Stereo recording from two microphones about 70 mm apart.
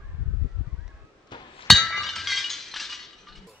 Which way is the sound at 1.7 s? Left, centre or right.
Centre.